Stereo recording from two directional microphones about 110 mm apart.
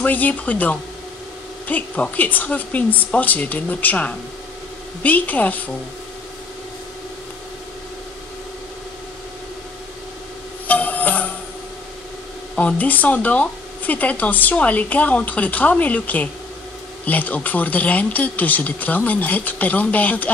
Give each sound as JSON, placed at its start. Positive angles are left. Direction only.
{"t": 0.0, "sound": "speech", "side_deg": 15}
{"t": 10.7, "sound": "music", "side_deg": 15}
{"t": 12.5, "sound": "speech", "side_deg": 15}